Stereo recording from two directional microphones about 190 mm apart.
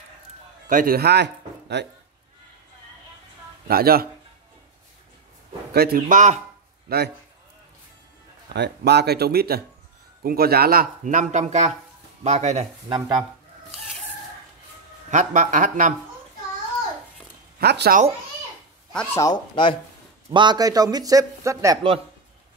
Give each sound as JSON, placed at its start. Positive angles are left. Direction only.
{"t": 0.7, "sound": "speech", "side_deg": -45}
{"t": 3.6, "sound": "speech", "side_deg": -50}
{"t": 5.7, "sound": "speech", "side_deg": -55}
{"t": 6.9, "sound": "speech", "side_deg": -55}
{"t": 8.5, "sound": "speech", "side_deg": -60}
{"t": 15.0, "sound": "speech", "side_deg": -40}
{"t": 17.6, "sound": "speech", "side_deg": -55}
{"t": 18.9, "sound": "speech", "side_deg": 15}
{"t": 20.2, "sound": "a man's voice", "side_deg": -25}